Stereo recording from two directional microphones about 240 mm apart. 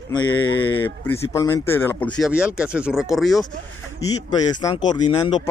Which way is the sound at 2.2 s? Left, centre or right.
Centre.